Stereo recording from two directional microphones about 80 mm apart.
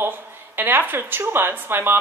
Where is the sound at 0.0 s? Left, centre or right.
Right.